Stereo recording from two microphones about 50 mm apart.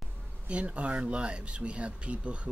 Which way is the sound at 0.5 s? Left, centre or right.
Right.